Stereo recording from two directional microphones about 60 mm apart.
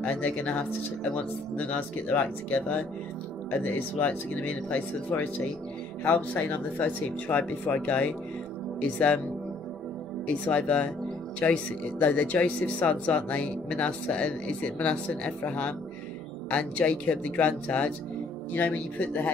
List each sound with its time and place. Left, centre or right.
0.0 s speech: left
10.2 s speech: left